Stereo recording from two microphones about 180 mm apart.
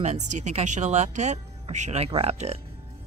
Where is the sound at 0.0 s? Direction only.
40° right (ahead or behind).